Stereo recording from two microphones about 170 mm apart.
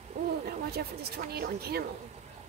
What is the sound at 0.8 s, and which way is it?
A woman's voice, 70° right (ahead or behind).